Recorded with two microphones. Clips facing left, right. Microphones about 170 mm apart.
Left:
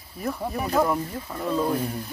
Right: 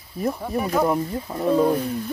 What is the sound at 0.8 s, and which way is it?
Speech, 20° right (ahead or behind).